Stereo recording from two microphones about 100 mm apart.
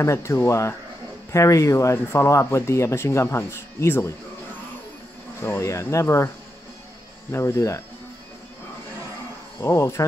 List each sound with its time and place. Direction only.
0.0 s speech: 30° left (ahead or behind)
5.4 s speech: 30° left (ahead or behind)
7.3 s speech: 30° left (ahead or behind)
9.6 s speech: 30° left (ahead or behind)